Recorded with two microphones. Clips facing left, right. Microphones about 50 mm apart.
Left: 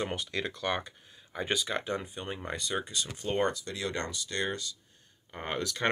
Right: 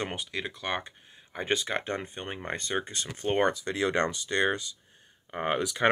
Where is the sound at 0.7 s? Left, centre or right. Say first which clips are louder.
Even; right.